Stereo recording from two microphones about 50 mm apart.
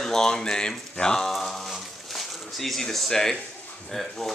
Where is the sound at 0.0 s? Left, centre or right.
Centre.